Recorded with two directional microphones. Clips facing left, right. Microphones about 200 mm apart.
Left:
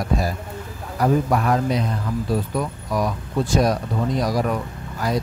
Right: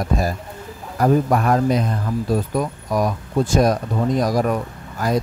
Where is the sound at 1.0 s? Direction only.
45° right (ahead or behind).